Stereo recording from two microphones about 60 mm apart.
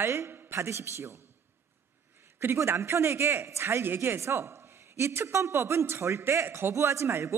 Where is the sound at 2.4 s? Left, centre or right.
Right.